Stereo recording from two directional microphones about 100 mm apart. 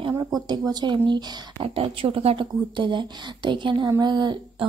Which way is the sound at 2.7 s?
50° right (ahead or behind).